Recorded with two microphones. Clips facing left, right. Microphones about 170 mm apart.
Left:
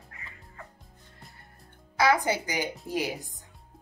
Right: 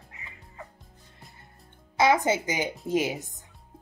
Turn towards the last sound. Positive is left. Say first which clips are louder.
# right 4 dB
turn(degrees=-20)  # may be behind; listen again after turning